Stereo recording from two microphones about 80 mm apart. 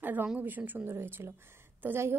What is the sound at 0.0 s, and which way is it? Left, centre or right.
A woman's voice, right.